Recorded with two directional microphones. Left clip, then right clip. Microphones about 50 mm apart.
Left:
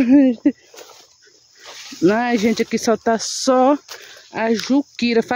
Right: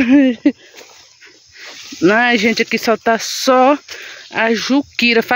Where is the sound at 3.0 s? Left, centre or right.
Left.